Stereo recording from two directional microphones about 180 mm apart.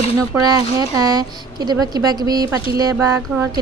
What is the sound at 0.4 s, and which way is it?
A woman's voice, 20° right (ahead or behind).